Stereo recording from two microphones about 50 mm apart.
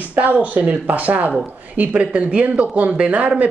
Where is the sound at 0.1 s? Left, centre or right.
Right.